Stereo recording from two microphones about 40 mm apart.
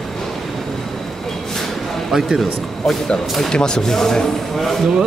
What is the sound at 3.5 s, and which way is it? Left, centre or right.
Speech, centre.